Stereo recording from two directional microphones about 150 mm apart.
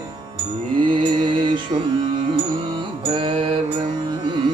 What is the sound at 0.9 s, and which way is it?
Mantra, 35° right (ahead or behind).